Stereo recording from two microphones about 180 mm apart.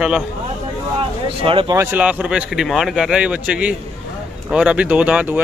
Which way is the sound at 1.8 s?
10° right (ahead or behind).